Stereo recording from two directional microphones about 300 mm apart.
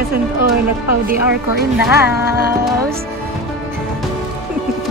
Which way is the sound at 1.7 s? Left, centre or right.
Centre.